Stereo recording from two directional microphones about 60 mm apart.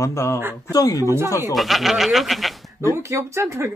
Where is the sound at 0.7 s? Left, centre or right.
Left.